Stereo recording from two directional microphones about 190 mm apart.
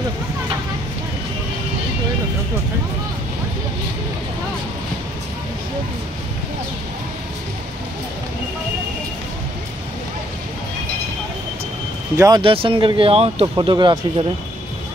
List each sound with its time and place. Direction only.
12.2 s speech: 25° right (ahead or behind)